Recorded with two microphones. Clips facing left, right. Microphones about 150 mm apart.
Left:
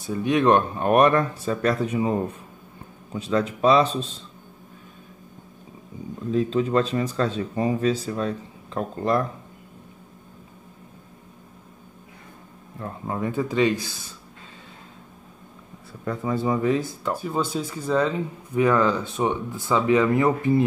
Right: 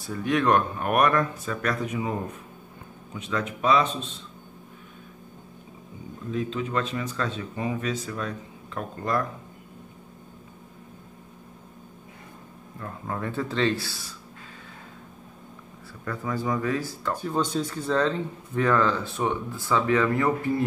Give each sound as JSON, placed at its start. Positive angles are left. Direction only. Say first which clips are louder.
{"t": 0.0, "sound": "speech", "louder": "left 4 dB", "side_deg": 20}
{"t": 3.2, "sound": "speech", "louder": "left 6 dB", "side_deg": 35}
{"t": 6.3, "sound": "speech", "louder": "left 7 dB", "side_deg": 35}
{"t": 12.8, "sound": "speech", "louder": "left 4 dB", "side_deg": 20}
{"t": 16.1, "sound": "speech", "louder": "left 4 dB", "side_deg": 25}
{"t": 17.1, "sound": "speech", "louder": "left 1 dB", "side_deg": 5}